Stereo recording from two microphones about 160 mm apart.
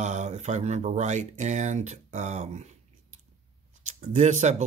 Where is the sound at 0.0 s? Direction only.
45° right (ahead or behind).